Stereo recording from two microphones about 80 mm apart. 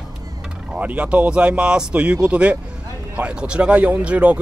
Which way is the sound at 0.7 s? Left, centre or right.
Centre.